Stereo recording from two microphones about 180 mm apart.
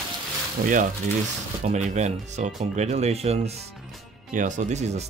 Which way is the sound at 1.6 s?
40° right (ahead or behind).